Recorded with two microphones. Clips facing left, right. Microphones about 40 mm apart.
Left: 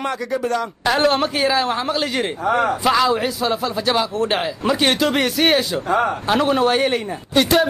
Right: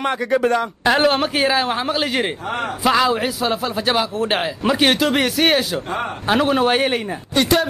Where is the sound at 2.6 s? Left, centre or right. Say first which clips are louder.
Right 3 dB; centre.